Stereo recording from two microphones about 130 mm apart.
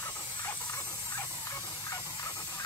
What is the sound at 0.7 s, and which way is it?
Steam, 25° left (ahead or behind).